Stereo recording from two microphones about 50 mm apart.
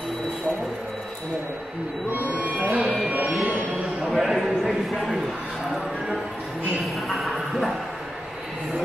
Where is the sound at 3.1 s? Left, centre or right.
Right.